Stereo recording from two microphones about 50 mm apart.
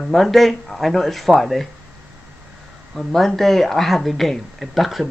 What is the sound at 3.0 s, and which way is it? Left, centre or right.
Speech, centre.